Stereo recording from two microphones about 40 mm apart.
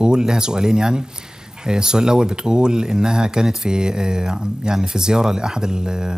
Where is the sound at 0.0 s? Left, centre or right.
Centre.